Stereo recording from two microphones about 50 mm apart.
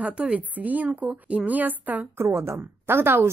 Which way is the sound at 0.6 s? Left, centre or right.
Right.